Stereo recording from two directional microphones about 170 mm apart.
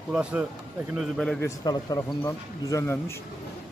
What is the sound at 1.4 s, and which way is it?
A man's voice, 20° left (ahead or behind).